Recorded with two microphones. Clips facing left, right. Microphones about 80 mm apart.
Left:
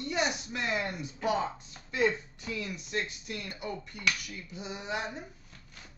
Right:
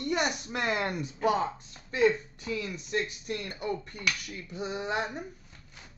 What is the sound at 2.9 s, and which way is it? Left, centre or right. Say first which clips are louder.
Speech: right 5 dB; right.